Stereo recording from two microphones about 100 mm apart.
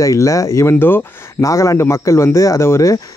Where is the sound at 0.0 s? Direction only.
35° left (ahead or behind).